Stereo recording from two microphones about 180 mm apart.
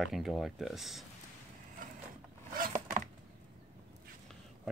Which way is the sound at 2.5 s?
50° right (ahead or behind).